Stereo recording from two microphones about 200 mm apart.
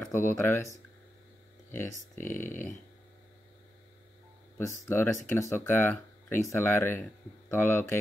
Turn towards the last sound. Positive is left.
turn(degrees=10)  # may be behind; listen again after turning